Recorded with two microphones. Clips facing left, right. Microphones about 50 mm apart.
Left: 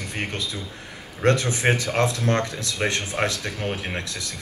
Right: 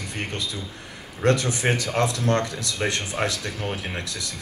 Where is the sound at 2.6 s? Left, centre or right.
Left.